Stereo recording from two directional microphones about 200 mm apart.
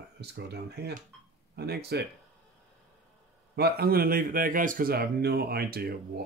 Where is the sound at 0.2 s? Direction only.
55° right (ahead or behind).